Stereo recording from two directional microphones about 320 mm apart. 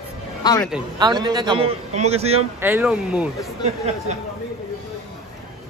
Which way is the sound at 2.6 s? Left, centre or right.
Centre.